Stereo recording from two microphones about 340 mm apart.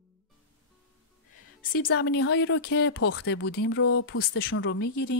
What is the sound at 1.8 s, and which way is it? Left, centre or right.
A woman's voice, left.